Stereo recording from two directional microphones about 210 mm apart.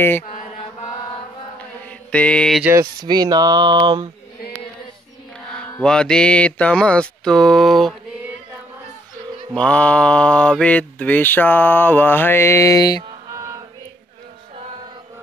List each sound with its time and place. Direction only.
1.6 s mantra: 5° left (ahead or behind)
2.7 s speech: 15° right (ahead or behind)
5.5 s mantra: 5° left (ahead or behind)
9.5 s mantra: 5° left (ahead or behind)